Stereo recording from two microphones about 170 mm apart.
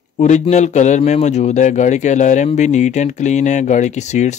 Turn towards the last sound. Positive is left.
turn(degrees=45)  # may be behind; listen again after turning